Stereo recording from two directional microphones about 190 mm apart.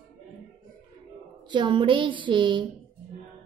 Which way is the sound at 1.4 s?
25° right (ahead or behind).